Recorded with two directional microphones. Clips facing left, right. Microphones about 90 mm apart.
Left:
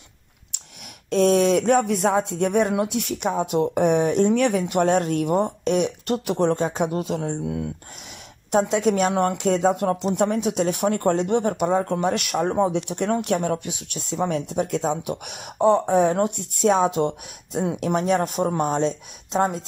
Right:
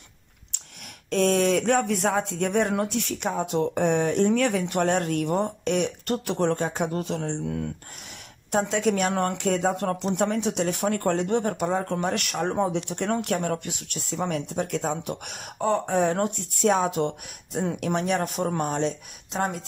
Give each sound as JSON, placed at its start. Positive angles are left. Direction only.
{"t": 1.1, "sound": "speech", "side_deg": 20}
{"t": 8.5, "sound": "speech", "side_deg": 20}